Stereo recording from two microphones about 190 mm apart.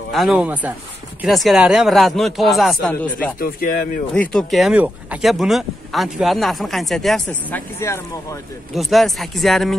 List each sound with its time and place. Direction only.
0.1 s speech: centre (ahead or behind)
3.3 s speech: 50° left (ahead or behind)
4.1 s speech: 5° left (ahead or behind)
8.7 s speech: centre (ahead or behind)